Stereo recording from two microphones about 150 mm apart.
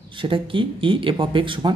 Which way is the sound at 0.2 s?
35° right (ahead or behind).